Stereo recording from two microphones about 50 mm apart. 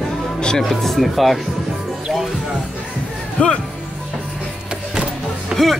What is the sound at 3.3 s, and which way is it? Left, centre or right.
Speech, left.